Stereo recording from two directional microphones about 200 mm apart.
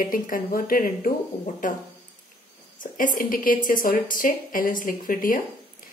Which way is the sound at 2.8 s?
45° left (ahead or behind).